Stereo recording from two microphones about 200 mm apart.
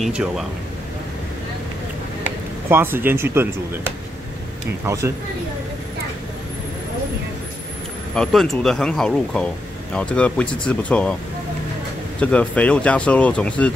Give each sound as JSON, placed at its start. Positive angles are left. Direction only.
{"t": 0.0, "sound": "speech", "side_deg": 0}
{"t": 2.7, "sound": "speech", "side_deg": -10}
{"t": 4.8, "sound": "speech", "side_deg": -15}
{"t": 8.1, "sound": "speech", "side_deg": 5}
{"t": 12.2, "sound": "speech", "side_deg": 5}